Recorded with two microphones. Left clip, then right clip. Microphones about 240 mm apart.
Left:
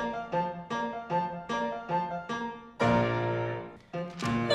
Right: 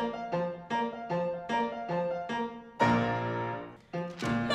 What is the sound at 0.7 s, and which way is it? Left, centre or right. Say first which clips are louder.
Music: left 1 dB; right.